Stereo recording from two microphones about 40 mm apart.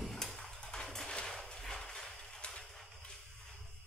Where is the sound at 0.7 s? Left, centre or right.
Centre.